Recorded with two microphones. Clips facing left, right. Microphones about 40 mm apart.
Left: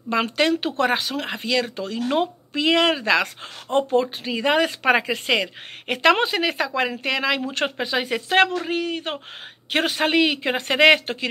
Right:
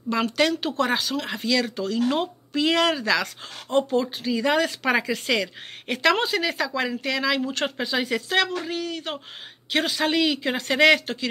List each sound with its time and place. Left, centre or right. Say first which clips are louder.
0.1 s a man's voice: left 2 dB; left
1.3 s a man's voice: left 1 dB; left